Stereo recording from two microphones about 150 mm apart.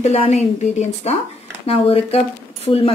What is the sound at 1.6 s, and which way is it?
Speech, 40° left (ahead or behind).